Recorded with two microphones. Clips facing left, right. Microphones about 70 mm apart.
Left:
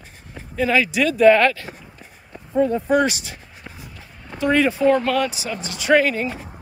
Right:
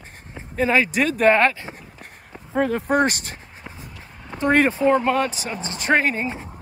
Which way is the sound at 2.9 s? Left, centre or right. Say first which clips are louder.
Left 1 dB; right.